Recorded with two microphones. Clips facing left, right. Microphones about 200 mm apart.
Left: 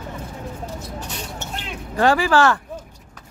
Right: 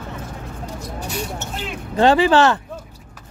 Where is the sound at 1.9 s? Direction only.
20° right (ahead or behind).